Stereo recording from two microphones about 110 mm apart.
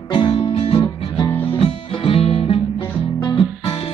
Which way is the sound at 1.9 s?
55° left (ahead or behind).